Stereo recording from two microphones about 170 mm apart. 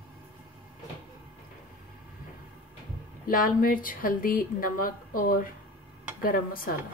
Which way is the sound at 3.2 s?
55° left (ahead or behind).